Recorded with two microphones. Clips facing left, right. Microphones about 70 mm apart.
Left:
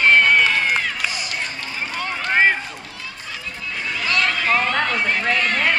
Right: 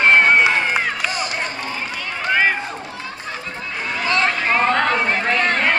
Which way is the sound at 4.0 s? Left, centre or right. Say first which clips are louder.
Right 2 dB; right.